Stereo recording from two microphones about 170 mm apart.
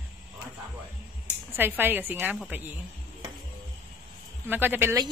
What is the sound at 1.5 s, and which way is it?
Speech, 10° right (ahead or behind).